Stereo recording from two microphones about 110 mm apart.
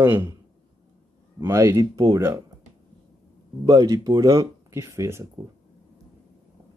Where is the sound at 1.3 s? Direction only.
30° right (ahead or behind).